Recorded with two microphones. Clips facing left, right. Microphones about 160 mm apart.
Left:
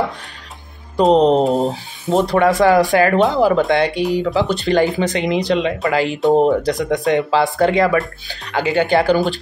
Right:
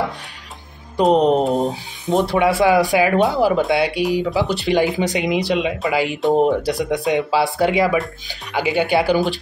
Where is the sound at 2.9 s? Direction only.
10° right (ahead or behind).